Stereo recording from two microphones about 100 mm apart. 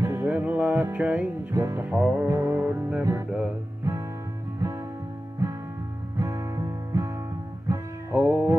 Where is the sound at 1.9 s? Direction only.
10° right (ahead or behind).